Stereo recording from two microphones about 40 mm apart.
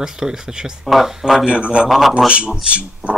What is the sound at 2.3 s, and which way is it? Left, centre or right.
Speech, right.